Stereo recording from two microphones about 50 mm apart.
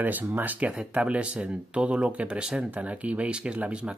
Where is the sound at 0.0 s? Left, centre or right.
Right.